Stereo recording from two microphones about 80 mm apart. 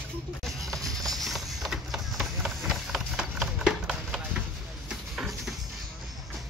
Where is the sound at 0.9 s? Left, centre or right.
Centre.